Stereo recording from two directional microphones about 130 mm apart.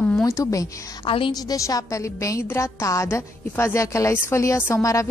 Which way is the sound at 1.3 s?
25° left (ahead or behind).